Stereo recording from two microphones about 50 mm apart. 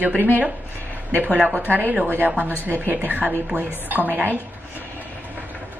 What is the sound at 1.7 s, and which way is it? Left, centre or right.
Speech, right.